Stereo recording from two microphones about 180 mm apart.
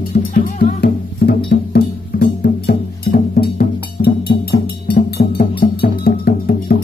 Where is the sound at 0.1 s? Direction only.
55° left (ahead or behind).